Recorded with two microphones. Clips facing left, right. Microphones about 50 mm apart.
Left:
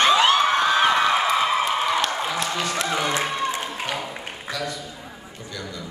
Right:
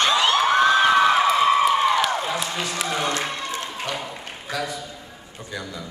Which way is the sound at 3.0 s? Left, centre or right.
Centre.